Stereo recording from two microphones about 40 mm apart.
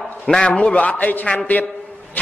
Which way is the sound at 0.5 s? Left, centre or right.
Left.